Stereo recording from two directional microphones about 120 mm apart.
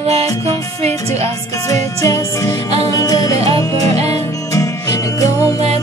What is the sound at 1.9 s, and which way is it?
Music, 25° left (ahead or behind).